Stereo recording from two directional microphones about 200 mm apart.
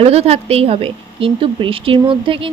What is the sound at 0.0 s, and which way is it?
A woman's voice, 30° right (ahead or behind).